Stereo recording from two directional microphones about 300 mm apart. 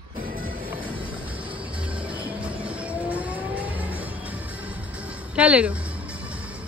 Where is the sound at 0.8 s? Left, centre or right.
Centre.